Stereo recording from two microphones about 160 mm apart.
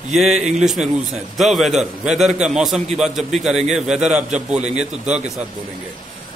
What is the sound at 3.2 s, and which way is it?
Speech, 45° right (ahead or behind).